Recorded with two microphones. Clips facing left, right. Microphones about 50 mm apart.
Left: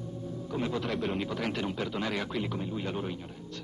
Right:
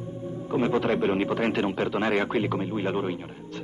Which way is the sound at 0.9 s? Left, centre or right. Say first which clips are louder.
Right 8 dB; right.